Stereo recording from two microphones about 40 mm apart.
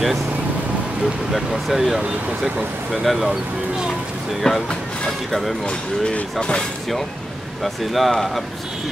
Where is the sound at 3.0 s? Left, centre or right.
Centre.